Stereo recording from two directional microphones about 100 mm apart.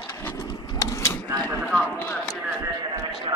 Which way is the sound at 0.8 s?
30° left (ahead or behind).